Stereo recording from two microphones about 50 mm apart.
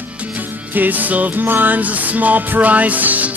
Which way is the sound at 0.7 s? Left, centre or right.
Right.